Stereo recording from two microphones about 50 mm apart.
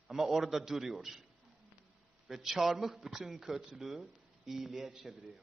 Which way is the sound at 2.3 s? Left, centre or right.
Centre.